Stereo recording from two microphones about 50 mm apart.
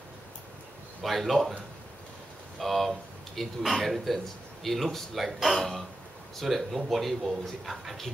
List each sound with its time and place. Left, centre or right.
1.0 s speech: centre
2.6 s speech: centre